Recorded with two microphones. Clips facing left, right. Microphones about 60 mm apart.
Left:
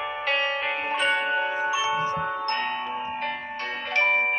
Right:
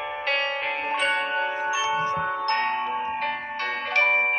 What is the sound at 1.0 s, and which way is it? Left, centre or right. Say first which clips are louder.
Music: left 2 dB; centre.